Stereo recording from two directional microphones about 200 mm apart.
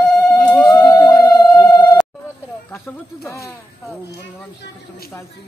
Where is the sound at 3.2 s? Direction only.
15° left (ahead or behind).